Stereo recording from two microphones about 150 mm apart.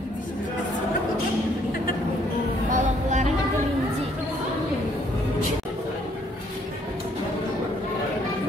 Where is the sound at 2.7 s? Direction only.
55° right (ahead or behind).